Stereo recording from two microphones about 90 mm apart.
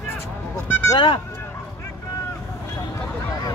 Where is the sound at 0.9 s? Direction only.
65° left (ahead or behind).